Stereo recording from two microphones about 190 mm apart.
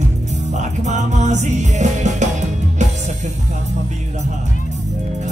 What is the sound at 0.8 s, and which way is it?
Music, 40° right (ahead or behind).